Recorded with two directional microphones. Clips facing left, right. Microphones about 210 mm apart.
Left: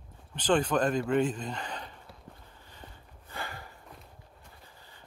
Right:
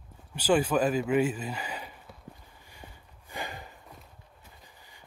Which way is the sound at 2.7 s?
15° right (ahead or behind).